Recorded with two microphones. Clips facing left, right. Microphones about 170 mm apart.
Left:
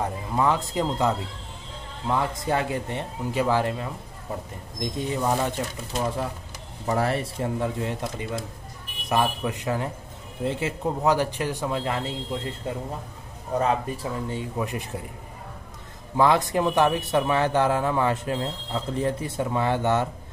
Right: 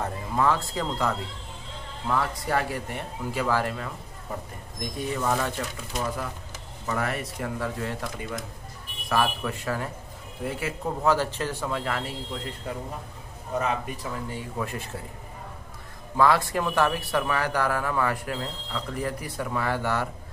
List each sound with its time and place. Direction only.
0.0 s a man's voice: 20° left (ahead or behind)
5.9 s a man's voice: 30° left (ahead or behind)
13.6 s speech: 30° left (ahead or behind)
14.6 s speech: 15° left (ahead or behind)
16.2 s a man's voice: 20° left (ahead or behind)